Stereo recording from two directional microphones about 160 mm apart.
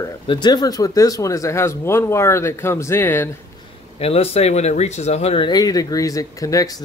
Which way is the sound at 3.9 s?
40° left (ahead or behind).